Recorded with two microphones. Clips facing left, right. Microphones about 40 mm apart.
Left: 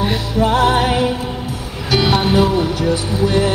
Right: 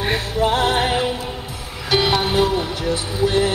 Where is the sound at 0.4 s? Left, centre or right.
Right.